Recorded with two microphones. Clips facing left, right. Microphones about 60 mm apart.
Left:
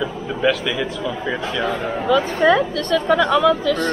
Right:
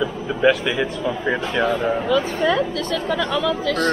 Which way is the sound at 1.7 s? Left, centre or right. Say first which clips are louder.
Left 3 dB; centre.